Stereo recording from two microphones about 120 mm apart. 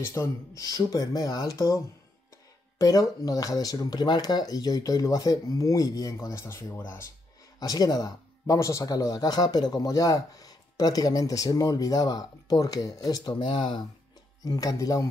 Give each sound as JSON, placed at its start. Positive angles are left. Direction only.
{"t": 0.0, "sound": "speech", "side_deg": 25}
{"t": 2.8, "sound": "speech", "side_deg": 30}
{"t": 7.5, "sound": "speech", "side_deg": 30}